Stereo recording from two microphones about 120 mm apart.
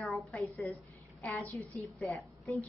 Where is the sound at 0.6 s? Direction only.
20° left (ahead or behind).